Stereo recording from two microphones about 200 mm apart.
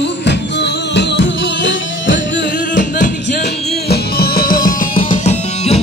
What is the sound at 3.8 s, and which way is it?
Music, 50° left (ahead or behind).